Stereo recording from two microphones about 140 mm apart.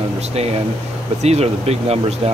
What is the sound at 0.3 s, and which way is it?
Speech, 50° right (ahead or behind).